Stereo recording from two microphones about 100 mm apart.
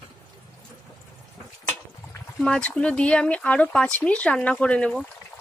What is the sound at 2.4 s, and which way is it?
Speech, 10° left (ahead or behind).